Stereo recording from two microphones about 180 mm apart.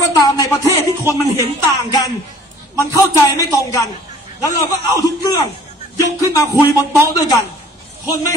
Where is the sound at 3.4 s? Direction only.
20° left (ahead or behind).